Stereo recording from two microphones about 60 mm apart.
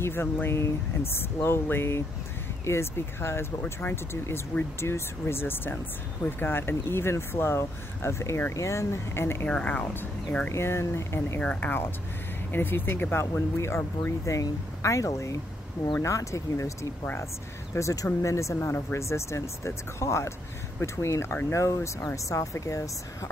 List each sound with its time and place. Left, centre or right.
0.0 s speech: left
9.5 s speech: left
10.5 s speech: left
11.4 s speech: left
12.5 s speech: left
14.2 s speech: left
18.6 s speech: left
18.9 s speech: left